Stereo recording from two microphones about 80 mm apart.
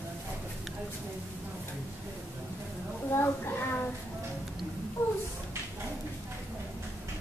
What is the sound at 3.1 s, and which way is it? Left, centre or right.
Speech, left.